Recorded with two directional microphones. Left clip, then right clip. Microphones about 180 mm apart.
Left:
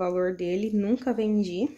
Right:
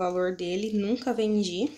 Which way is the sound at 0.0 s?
10° left (ahead or behind).